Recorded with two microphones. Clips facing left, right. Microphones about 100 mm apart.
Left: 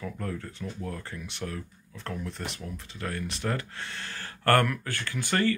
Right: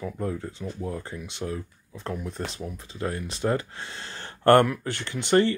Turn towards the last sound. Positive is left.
turn(degrees=-25)  # may be behind; listen again after turning